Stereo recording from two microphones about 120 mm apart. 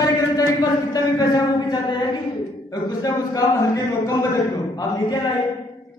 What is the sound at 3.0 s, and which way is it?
Speech, 30° left (ahead or behind).